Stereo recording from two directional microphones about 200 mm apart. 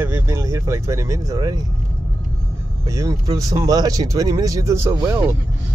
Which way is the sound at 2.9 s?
15° right (ahead or behind).